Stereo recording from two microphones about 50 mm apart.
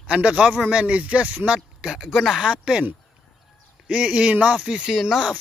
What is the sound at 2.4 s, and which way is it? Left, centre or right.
Speech, centre.